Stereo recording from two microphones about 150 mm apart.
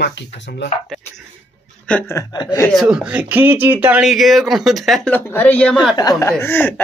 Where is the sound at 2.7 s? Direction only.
5° right (ahead or behind).